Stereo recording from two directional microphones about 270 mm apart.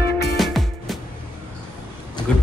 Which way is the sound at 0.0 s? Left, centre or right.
Left.